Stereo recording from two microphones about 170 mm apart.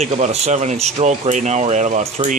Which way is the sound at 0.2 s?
40° right (ahead or behind).